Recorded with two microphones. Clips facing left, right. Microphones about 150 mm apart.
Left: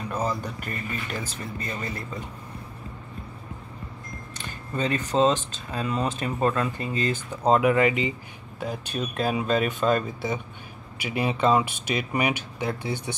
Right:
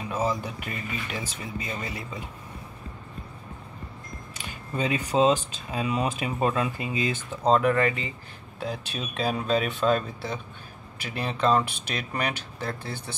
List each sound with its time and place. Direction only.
0.1 s speech: 10° right (ahead or behind)
4.4 s speech: 10° right (ahead or behind)
7.4 s speech: 10° left (ahead or behind)
8.6 s speech: centre (ahead or behind)
11.1 s speech: 10° left (ahead or behind)
11.6 s speech: 60° left (ahead or behind)
11.9 s speech: 10° left (ahead or behind)